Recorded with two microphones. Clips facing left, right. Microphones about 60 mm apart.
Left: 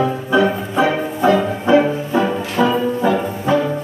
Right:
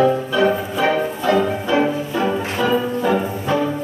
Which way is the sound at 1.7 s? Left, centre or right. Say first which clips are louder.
Left 9 dB; left.